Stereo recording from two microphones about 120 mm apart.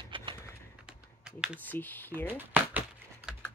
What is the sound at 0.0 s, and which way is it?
Bird, 45° right (ahead or behind).